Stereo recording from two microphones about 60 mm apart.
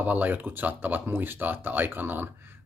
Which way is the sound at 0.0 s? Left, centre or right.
Right.